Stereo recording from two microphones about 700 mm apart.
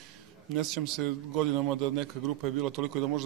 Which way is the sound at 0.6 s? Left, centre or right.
Right.